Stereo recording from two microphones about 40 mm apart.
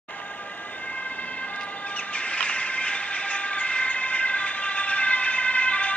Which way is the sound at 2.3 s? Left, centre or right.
Left.